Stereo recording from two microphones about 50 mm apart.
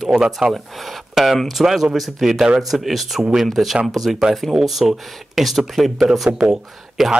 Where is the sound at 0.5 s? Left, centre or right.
Centre.